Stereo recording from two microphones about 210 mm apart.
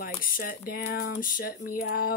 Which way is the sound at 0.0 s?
40° left (ahead or behind).